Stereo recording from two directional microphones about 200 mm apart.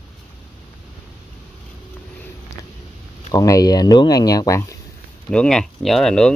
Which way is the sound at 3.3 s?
15° left (ahead or behind).